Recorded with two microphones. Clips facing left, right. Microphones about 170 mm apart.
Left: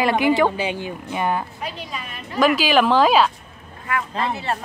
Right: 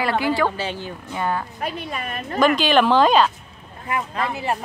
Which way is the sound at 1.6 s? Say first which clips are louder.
Right 3 dB; 55° right (ahead or behind).